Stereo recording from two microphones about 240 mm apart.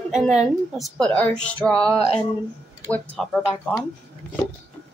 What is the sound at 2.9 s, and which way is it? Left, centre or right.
Speech, centre.